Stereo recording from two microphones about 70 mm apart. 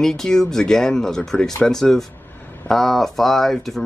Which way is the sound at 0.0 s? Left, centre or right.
Centre.